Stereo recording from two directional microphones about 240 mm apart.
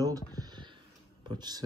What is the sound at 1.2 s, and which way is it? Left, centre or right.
Speech, centre.